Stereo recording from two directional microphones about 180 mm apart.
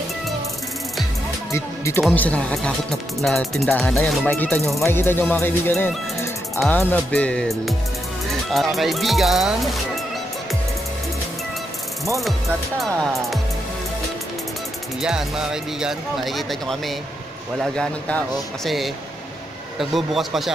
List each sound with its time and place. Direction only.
1.5 s speech: 15° left (ahead or behind); by 9.8 s centre (ahead or behind)
12.2 s speech: centre (ahead or behind)
15.0 s speech: 5° right (ahead or behind)